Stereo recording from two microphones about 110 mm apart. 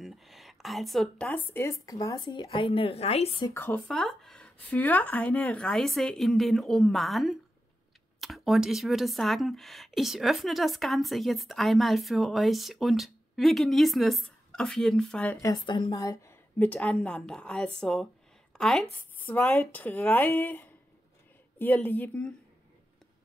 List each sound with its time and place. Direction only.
0.0 s a sound: centre (ahead or behind)
1.5 s speech: 25° left (ahead or behind)
2.1 s speech: 45° left (ahead or behind); by 3.3 s 70° left (ahead or behind)
3.5 s speech: 20° left (ahead or behind)
3.8 s speech: 5° left (ahead or behind)
15.4 s a woman's voice: 40° left (ahead or behind)
16.5 s speech: 10° left (ahead or behind)
19.1 s speech: 15° left (ahead or behind)